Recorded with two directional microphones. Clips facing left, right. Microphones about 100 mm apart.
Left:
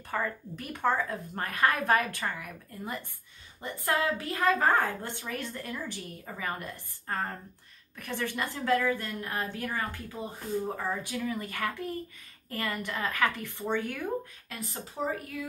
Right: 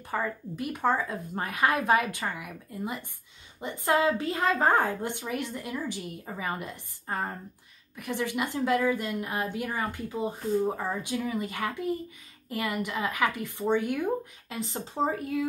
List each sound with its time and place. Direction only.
0.1 s a woman's voice: 15° right (ahead or behind)